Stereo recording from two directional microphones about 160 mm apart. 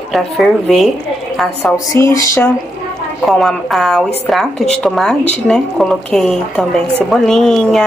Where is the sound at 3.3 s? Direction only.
Centre (ahead or behind).